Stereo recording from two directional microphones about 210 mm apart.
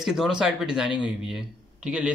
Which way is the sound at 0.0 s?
Centre (ahead or behind).